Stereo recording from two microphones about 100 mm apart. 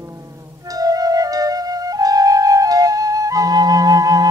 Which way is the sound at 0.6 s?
35° right (ahead or behind).